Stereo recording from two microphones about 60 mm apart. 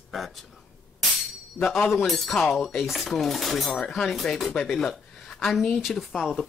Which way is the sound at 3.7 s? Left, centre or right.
Centre.